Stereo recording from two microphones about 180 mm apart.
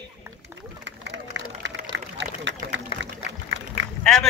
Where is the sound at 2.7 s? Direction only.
90° right.